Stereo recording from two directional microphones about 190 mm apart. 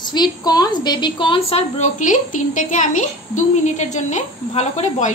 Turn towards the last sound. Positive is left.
turn(degrees=40)  # may be behind; listen again after turning